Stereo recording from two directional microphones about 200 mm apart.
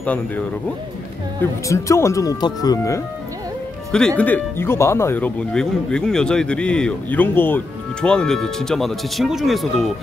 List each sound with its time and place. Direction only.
1.4 s speech: 15° left (ahead or behind)
4.2 s speech: 10° left (ahead or behind)